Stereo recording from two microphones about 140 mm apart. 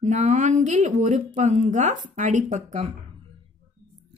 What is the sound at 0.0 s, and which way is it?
Speech, 55° right (ahead or behind).